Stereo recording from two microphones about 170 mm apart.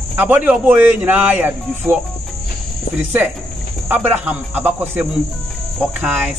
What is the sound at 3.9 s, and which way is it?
Speech, 10° right (ahead or behind).